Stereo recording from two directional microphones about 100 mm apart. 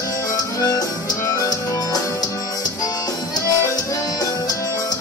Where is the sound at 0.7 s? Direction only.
40° left (ahead or behind).